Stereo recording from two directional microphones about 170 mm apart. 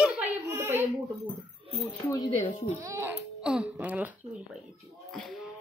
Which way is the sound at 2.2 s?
40° left (ahead or behind).